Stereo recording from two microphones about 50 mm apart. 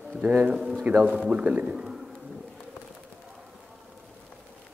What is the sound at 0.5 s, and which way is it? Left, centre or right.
A man's voice, centre.